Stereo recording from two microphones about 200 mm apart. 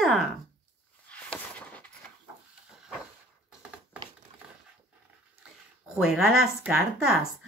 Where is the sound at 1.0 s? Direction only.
5° left (ahead or behind).